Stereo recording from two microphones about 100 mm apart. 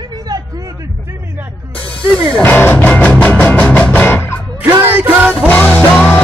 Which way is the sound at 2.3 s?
20° left (ahead or behind).